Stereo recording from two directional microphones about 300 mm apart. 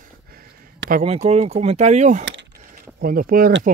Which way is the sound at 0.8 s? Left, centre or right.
Right.